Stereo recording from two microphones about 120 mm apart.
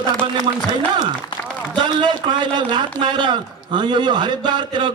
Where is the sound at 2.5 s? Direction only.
40° right (ahead or behind).